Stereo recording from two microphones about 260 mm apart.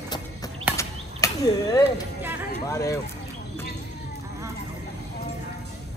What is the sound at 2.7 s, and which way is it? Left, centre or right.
Speech, centre.